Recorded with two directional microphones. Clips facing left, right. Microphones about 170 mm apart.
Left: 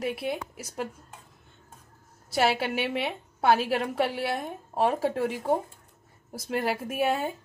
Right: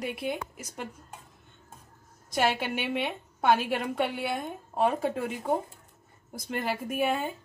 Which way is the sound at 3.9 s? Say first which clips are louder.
Left 2 dB; centre (ahead or behind).